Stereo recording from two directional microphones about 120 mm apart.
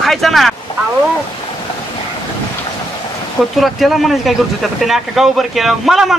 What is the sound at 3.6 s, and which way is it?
Speech, centre (ahead or behind).